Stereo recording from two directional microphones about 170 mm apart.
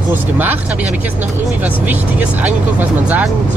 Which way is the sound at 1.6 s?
10° right (ahead or behind).